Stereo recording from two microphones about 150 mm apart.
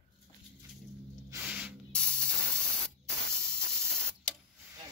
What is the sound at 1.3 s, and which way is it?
Spray, 10° right (ahead or behind).